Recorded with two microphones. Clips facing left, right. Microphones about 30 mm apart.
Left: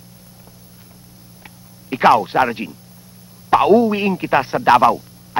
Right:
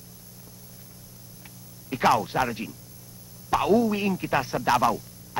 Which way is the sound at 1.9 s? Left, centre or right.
Left.